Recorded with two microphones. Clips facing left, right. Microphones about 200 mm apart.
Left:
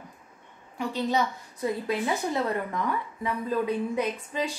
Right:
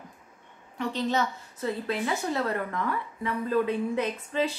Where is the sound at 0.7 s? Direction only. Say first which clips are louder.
Left 1 dB; 10° left (ahead or behind).